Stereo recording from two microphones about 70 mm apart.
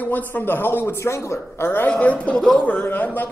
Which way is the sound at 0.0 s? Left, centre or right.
Left.